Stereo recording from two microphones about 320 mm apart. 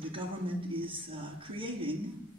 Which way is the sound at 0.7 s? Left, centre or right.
Centre.